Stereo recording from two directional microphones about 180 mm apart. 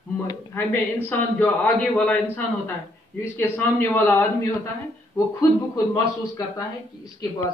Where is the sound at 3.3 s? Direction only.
10° left (ahead or behind).